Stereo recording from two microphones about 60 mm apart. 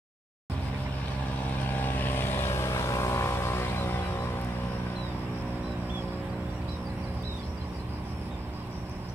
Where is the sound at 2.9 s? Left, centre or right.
Left.